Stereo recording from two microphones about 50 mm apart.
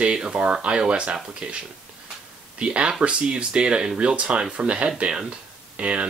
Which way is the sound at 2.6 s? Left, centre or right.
Right.